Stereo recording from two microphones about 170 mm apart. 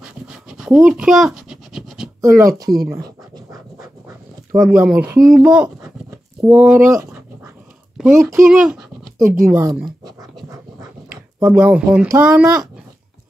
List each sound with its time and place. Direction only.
0.0 s pant: 5° right (ahead or behind)
2.2 s speech: 20° right (ahead or behind)
2.9 s pant: 20° right (ahead or behind)
4.6 s speech: 5° right (ahead or behind)
5.8 s dog: 15° right (ahead or behind)
8.1 s speech: 15° right (ahead or behind)
8.5 s dog: 5° right (ahead or behind)
9.2 s speech: 15° right (ahead or behind)
11.3 s speech: 10° right (ahead or behind)